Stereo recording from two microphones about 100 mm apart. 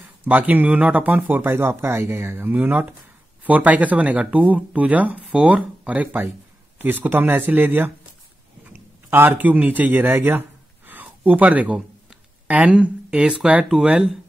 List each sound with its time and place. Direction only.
0.2 s speech: 15° right (ahead or behind)